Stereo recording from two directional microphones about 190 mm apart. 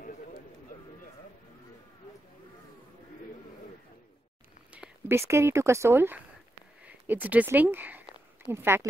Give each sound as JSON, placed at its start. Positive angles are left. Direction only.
{"t": 4.7, "sound": "speech", "side_deg": -10}